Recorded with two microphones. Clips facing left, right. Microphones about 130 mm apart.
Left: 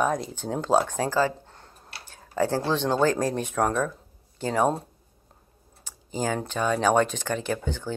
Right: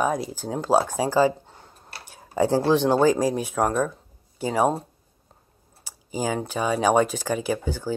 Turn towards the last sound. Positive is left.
turn(degrees=-5)  # may be behind; listen again after turning